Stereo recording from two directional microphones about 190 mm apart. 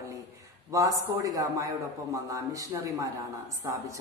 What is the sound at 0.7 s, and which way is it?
A woman's voice, 15° right (ahead or behind).